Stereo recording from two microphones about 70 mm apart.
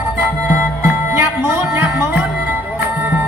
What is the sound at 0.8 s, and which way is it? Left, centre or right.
Music, right.